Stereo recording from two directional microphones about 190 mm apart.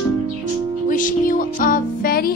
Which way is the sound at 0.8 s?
45° left (ahead or behind).